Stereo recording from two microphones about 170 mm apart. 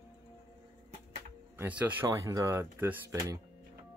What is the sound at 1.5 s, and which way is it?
Speech, 10° right (ahead or behind).